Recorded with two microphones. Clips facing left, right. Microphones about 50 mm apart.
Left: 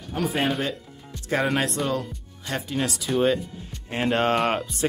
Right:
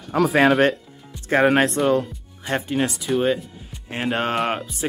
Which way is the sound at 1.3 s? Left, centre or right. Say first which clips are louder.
Right 7 dB; right.